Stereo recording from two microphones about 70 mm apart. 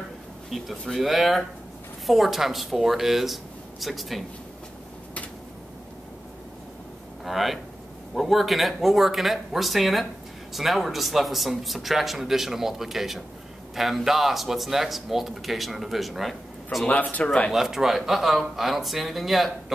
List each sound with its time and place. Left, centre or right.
0.5 s a man's voice: centre
7.2 s a man's voice: centre
16.8 s speech: centre
17.5 s a man's voice: centre